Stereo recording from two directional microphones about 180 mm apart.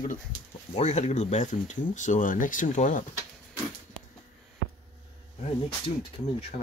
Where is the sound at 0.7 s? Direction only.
40° left (ahead or behind).